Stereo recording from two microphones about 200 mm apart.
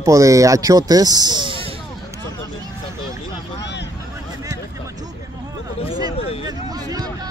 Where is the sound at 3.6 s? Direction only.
60° left (ahead or behind).